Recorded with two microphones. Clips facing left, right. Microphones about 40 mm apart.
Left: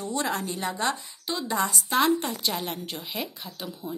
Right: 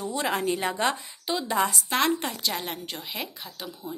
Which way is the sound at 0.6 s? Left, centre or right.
Right.